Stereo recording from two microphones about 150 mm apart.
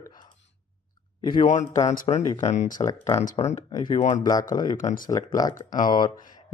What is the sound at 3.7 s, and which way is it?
Speech, 30° left (ahead or behind).